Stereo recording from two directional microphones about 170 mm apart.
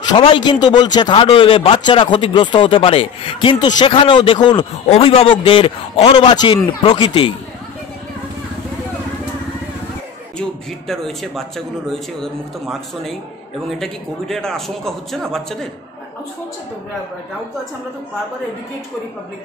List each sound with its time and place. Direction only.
0.1 s a man's voice: 25° left (ahead or behind)
4.8 s a man's voice: 35° left (ahead or behind)
10.9 s a man's voice: centre (ahead or behind)